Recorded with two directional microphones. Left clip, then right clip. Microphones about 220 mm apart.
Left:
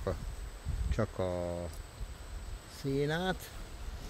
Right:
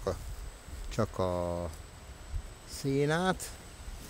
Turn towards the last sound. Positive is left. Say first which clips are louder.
# right 4 dB
turn(degrees=-30)  # may be behind; listen again after turning